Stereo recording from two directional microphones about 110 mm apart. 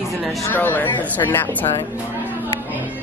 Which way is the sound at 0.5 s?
15° left (ahead or behind).